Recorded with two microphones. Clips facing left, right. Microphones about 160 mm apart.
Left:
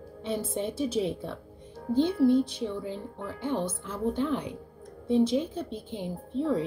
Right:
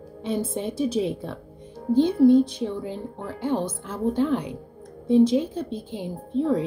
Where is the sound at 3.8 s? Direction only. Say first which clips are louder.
Right 6 dB; 55° right (ahead or behind).